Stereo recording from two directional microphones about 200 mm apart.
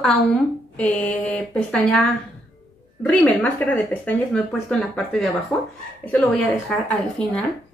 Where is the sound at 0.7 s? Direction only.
5° left (ahead or behind).